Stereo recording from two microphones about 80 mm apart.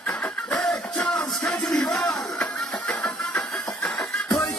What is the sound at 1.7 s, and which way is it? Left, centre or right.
Music, centre.